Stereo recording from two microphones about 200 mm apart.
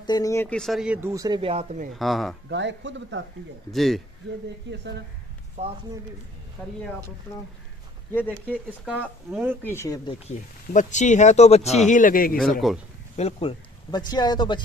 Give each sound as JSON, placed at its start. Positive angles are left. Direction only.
{"t": 0.0, "sound": "speech", "side_deg": 20}
{"t": 2.0, "sound": "speech", "side_deg": 0}
{"t": 2.5, "sound": "speech", "side_deg": -65}
{"t": 3.7, "sound": "speech", "side_deg": 0}
{"t": 5.6, "sound": "speech", "side_deg": -35}
{"t": 8.9, "sound": "speech", "side_deg": 5}
{"t": 10.7, "sound": "speech", "side_deg": 40}
{"t": 12.5, "sound": "speech", "side_deg": 0}
{"t": 13.1, "sound": "speech", "side_deg": 30}